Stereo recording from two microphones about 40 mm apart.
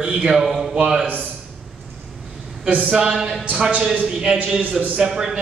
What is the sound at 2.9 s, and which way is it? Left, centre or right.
A man's voice, centre.